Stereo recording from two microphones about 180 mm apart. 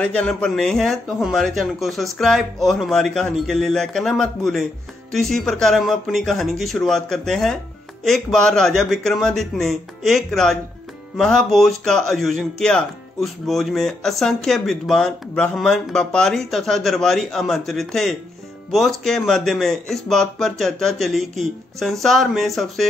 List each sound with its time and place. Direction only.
0.0 s speech: 5° left (ahead or behind)